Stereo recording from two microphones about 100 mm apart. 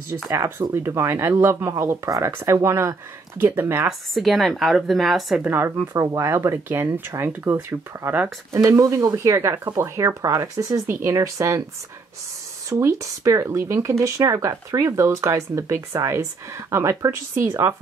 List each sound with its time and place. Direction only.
0.3 s speech: 30° right (ahead or behind)
4.1 s speech: centre (ahead or behind)
5.4 s speech: 20° right (ahead or behind)
8.6 s speech: 35° right (ahead or behind)
12.6 s speech: 30° right (ahead or behind)